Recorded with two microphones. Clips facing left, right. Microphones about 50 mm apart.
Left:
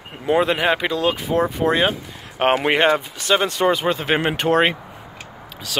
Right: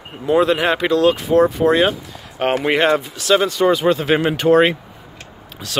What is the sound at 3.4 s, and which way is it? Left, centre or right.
Speech, left.